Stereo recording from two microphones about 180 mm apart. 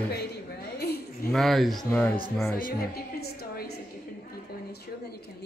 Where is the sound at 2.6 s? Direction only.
55° left (ahead or behind).